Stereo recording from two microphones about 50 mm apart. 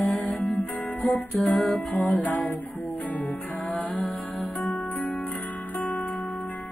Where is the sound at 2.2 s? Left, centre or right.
Left.